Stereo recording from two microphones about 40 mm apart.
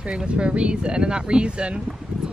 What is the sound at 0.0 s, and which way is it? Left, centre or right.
Speech, right.